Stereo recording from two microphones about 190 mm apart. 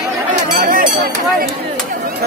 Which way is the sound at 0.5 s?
45° right (ahead or behind).